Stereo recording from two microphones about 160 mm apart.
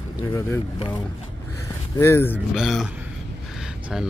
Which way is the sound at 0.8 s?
30° left (ahead or behind).